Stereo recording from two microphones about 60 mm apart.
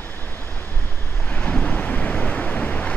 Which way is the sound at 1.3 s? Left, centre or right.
Left.